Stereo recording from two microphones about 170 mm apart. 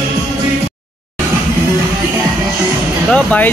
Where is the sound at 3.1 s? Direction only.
10° left (ahead or behind).